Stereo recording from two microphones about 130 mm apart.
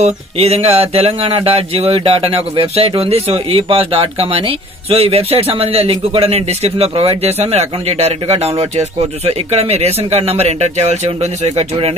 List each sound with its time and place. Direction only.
0.0 s speech: 50° right (ahead or behind)